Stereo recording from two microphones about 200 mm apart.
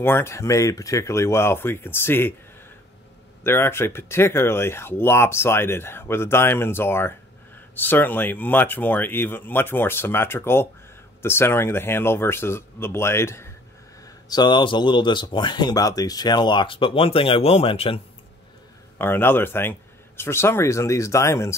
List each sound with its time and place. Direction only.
0.0 s speech: 10° left (ahead or behind)
3.4 s speech: 10° left (ahead or behind); by 18.0 s 30° left (ahead or behind)
18.9 s speech: 10° left (ahead or behind)